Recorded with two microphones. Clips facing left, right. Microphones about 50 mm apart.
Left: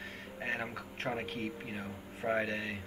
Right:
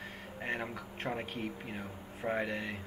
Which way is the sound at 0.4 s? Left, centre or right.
Centre.